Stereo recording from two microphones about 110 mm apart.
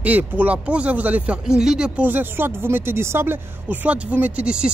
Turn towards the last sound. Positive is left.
turn(degrees=-10)  # may be behind; listen again after turning